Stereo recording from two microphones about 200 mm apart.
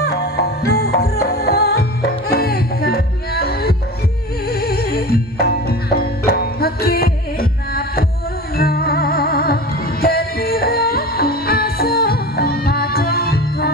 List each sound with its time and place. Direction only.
0.0 s music: 55° left (ahead or behind)